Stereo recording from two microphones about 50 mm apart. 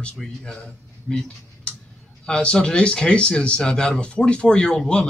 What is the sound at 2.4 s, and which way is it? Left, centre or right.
A man's voice, centre.